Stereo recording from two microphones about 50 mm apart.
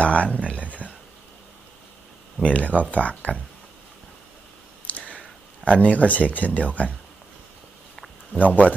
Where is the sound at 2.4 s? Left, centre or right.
Left.